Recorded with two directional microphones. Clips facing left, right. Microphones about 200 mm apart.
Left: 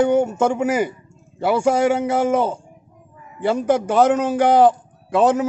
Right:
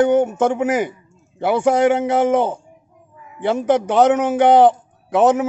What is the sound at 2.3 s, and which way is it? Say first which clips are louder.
Speech: right 2 dB; 20° right (ahead or behind).